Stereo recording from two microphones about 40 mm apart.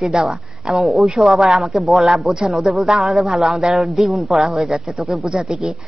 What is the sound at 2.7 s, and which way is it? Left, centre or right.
Speech, centre.